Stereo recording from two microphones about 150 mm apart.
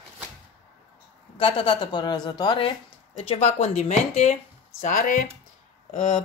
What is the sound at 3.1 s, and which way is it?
Speech, 50° left (ahead or behind).